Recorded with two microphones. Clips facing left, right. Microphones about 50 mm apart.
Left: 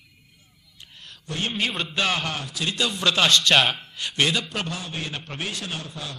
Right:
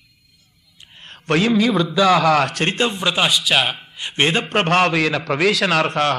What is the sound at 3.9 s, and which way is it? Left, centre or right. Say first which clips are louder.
Speech: right 7 dB; right.